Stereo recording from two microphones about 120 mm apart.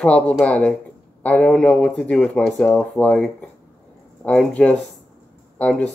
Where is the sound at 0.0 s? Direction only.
10° left (ahead or behind).